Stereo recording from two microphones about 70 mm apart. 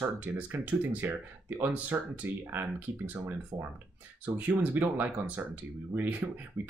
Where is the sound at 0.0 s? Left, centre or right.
Right.